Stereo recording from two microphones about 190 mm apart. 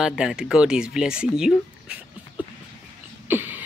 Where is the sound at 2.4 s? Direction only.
10° right (ahead or behind).